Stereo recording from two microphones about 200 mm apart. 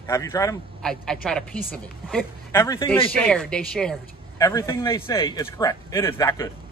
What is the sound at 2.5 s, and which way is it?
Speech, 15° left (ahead or behind).